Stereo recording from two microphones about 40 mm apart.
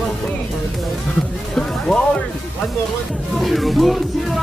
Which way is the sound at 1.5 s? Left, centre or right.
Left.